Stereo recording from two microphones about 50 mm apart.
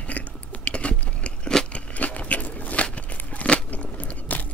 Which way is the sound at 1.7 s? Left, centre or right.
Left.